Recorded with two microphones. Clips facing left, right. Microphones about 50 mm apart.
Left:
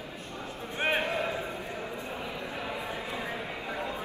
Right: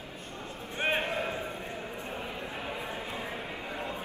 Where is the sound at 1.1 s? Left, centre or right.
Left.